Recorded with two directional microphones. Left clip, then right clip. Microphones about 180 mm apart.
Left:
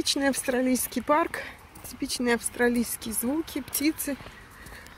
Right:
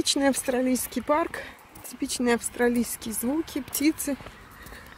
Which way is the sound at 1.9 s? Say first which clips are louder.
Right 1 dB; 10° right (ahead or behind).